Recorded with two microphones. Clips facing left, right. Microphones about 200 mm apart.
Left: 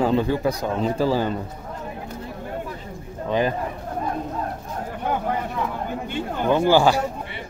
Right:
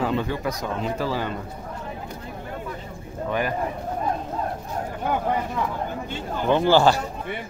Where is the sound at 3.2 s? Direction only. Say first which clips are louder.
Left 4 dB; 20° left (ahead or behind).